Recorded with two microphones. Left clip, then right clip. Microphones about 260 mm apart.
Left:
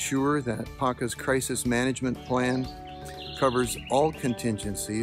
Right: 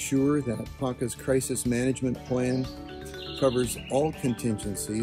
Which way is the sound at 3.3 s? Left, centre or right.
Left.